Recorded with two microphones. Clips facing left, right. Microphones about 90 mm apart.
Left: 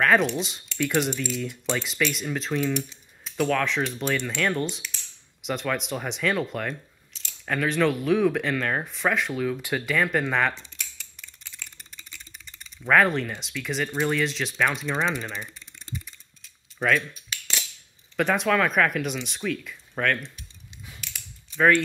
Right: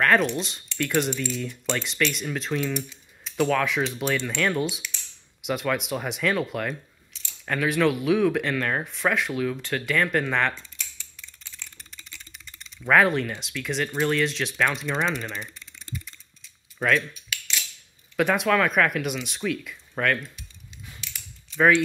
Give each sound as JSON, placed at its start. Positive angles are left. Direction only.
{"t": 0.0, "sound": "speech", "side_deg": 5}
{"t": 10.5, "sound": "computer keyboard", "side_deg": 20}
{"t": 12.8, "sound": "speech", "side_deg": 0}
{"t": 16.8, "sound": "speech", "side_deg": 5}
{"t": 17.3, "sound": "cutlery", "side_deg": 35}
{"t": 18.1, "sound": "speech", "side_deg": 0}
{"t": 21.5, "sound": "speech", "side_deg": -5}